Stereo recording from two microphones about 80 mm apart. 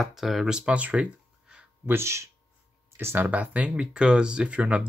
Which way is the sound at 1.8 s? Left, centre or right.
Right.